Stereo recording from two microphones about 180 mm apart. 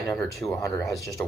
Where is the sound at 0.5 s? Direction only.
15° left (ahead or behind).